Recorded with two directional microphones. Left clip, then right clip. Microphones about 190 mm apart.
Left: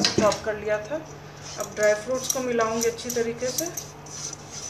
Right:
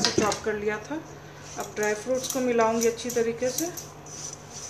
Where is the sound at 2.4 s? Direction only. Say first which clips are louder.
Right 2 dB; 40° right (ahead or behind).